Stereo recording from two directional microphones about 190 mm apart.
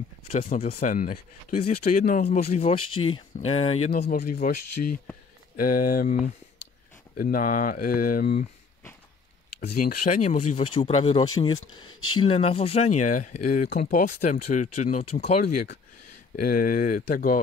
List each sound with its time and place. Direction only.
0.3 s speech: 35° left (ahead or behind)
0.7 s speech: 45° left (ahead or behind)
4.1 s speech: 50° left (ahead or behind)
7.2 s speech: 45° left (ahead or behind)
9.6 s speech: 50° left (ahead or behind)